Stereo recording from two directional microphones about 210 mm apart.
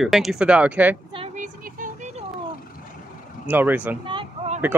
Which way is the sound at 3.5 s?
10° right (ahead or behind).